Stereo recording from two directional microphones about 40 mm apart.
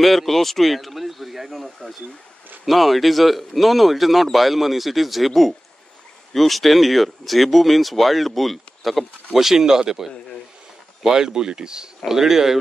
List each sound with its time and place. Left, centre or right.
0.0 s speech: centre